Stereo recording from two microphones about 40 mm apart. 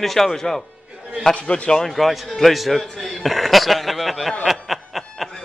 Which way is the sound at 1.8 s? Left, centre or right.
Centre.